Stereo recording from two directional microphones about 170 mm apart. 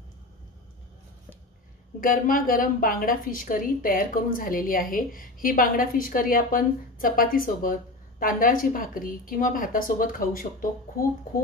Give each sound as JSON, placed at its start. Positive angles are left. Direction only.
{"t": 2.0, "sound": "a woman's voice", "side_deg": 55}